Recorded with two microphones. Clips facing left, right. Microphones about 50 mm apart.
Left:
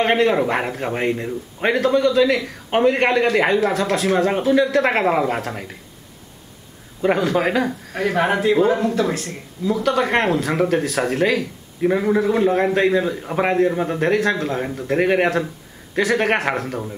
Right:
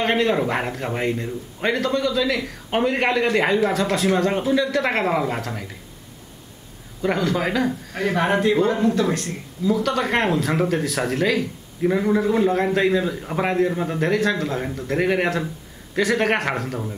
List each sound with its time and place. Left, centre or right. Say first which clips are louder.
0.0 s a man's voice: left 3 dB; centre
7.3 s a man's voice: left 4 dB; centre
7.6 s a man's voice: left 1 dB; centre
11.8 s a man's voice: left 2 dB; centre